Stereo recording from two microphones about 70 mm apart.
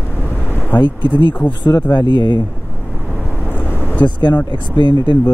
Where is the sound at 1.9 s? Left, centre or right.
Left.